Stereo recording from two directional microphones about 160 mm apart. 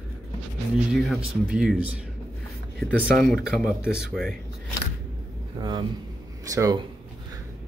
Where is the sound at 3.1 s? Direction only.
Centre (ahead or behind).